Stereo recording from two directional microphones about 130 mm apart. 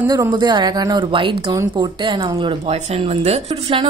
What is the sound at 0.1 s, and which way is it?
Speech, 35° right (ahead or behind).